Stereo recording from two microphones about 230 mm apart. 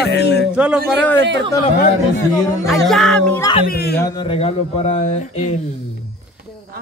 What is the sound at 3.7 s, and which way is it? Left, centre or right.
Speech, left.